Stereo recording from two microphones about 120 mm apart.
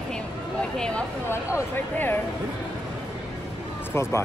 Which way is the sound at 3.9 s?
25° left (ahead or behind).